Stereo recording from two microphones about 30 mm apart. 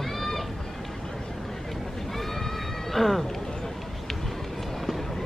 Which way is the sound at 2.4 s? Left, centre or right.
Centre.